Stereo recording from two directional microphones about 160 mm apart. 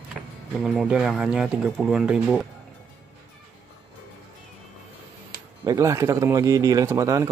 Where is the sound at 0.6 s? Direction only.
Centre (ahead or behind).